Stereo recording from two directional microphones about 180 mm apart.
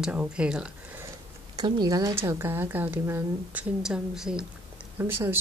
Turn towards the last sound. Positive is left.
turn(degrees=-10)  # may be behind; listen again after turning